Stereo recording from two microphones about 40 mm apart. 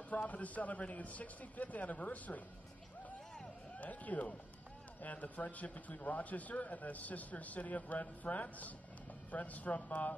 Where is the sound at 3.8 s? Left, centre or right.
Left.